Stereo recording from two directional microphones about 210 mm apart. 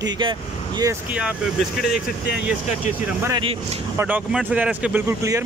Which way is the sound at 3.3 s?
25° right (ahead or behind).